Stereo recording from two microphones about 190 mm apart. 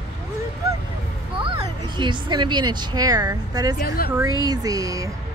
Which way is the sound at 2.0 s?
25° right (ahead or behind).